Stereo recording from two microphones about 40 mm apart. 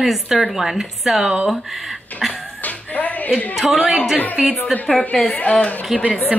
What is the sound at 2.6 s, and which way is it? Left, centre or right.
Music, left.